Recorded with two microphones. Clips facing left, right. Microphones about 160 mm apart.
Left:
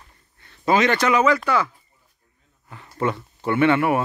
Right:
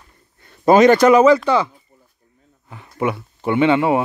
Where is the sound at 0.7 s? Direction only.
40° right (ahead or behind); by 1.7 s 25° right (ahead or behind).